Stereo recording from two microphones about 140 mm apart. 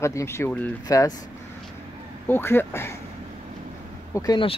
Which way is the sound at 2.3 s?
15° left (ahead or behind).